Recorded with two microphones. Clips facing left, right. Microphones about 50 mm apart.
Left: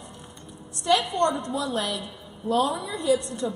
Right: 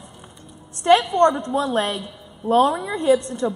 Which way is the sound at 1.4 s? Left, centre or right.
Right.